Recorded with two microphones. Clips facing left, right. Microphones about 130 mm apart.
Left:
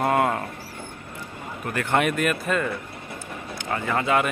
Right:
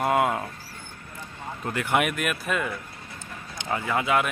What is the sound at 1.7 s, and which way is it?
A man's voice, 15° right (ahead or behind).